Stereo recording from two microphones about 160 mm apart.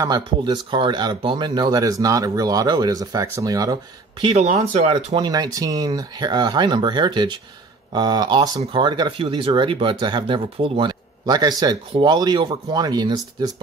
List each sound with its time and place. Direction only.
0.0 s speech: 25° right (ahead or behind)
4.4 s speech: 45° right (ahead or behind)
5.1 s speech: 25° right (ahead or behind)